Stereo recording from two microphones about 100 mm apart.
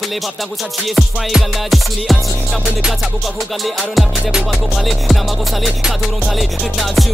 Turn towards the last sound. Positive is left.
turn(degrees=0)  # may be behind; listen again after turning